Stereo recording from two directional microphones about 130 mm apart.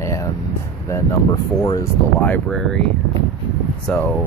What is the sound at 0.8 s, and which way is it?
Speech, 25° left (ahead or behind).